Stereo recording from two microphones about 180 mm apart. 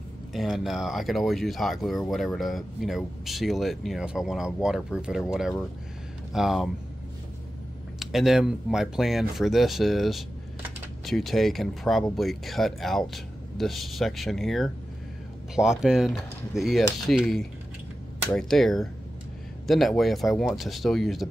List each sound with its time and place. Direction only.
0.3 s speech: centre (ahead or behind)
6.3 s speech: centre (ahead or behind)
8.0 s speech: centre (ahead or behind)